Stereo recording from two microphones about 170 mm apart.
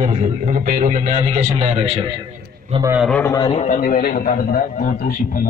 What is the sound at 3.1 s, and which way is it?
Speech, 10° left (ahead or behind).